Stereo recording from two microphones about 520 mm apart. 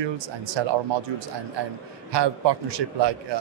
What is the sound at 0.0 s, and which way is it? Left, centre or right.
Speech, right.